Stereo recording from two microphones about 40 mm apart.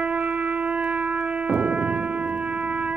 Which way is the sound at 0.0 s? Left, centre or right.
Right.